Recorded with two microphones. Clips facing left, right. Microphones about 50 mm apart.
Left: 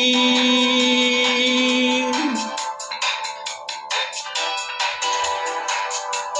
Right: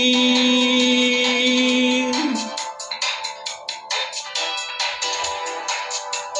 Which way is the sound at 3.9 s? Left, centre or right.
Left.